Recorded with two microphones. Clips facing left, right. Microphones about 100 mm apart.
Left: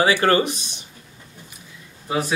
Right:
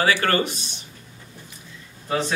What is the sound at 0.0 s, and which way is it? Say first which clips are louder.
Speech: left 3 dB; 20° left (ahead or behind).